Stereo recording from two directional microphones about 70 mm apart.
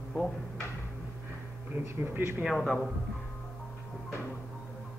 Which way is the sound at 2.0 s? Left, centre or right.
Right.